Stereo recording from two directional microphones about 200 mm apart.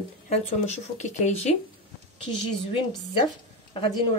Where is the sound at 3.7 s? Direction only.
25° left (ahead or behind).